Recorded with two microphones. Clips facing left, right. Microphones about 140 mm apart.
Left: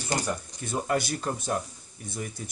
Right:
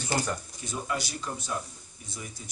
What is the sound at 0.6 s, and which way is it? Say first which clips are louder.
Speech: left 5 dB; 55° left (ahead or behind).